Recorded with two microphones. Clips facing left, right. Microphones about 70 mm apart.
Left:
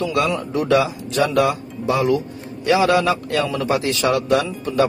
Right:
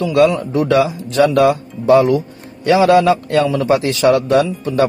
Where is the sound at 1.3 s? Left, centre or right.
Right.